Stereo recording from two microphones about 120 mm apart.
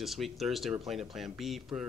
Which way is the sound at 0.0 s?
Centre (ahead or behind).